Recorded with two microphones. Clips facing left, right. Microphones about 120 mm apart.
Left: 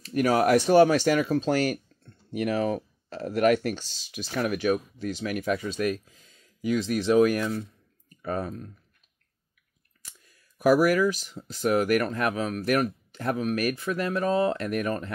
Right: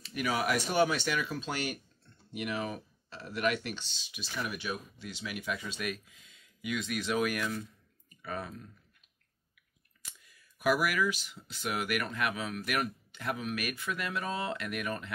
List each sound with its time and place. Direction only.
0.0 s speech: 45° left (ahead or behind)
10.2 s speech: 40° left (ahead or behind)